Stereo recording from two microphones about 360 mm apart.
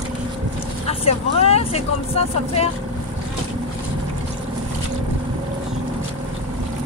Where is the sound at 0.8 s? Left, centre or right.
Centre.